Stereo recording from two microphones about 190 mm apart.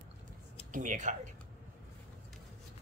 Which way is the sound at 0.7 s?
40° right (ahead or behind).